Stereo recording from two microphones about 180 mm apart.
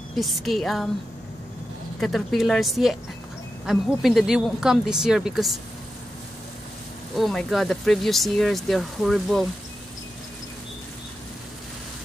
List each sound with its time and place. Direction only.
0.1 s speech: centre (ahead or behind)
2.0 s speech: centre (ahead or behind)
7.2 s speech: centre (ahead or behind)